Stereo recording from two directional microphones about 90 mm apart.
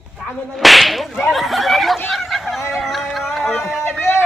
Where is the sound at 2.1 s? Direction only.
Centre (ahead or behind).